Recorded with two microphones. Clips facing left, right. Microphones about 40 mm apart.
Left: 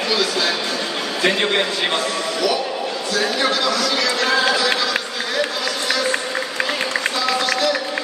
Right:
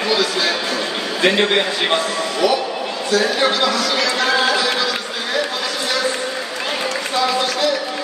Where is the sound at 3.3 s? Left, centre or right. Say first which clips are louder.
Right 2 dB; right.